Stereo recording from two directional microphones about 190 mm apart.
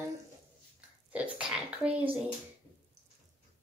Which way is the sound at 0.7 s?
5° right (ahead or behind).